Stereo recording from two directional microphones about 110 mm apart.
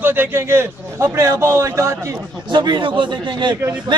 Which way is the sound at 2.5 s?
45° right (ahead or behind).